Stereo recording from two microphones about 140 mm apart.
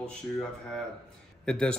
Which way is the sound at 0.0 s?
5° left (ahead or behind).